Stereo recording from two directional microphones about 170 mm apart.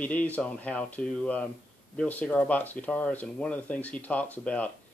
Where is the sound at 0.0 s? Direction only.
10° left (ahead or behind).